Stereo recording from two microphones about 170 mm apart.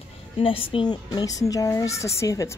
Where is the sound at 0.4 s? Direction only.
30° left (ahead or behind).